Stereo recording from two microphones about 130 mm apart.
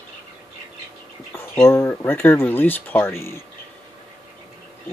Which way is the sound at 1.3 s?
20° left (ahead or behind).